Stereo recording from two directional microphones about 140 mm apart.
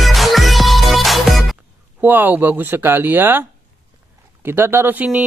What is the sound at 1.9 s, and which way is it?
Speech, 15° right (ahead or behind).